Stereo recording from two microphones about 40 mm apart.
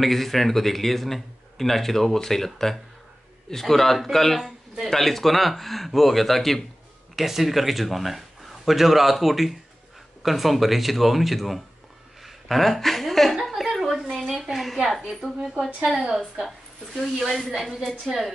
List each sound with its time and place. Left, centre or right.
0.0 s speech: centre
7.2 s speech: centre
12.2 s a sound: centre
14.8 s a woman's voice: centre
15.8 s a woman's voice: right
16.3 s speech: centre